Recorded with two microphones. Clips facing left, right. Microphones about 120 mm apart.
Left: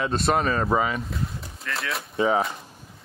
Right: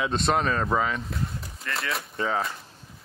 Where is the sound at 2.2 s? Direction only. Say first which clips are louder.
Left 6 dB; 20° left (ahead or behind).